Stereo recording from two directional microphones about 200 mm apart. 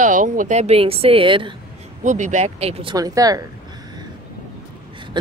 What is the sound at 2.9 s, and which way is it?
Speech, 20° right (ahead or behind).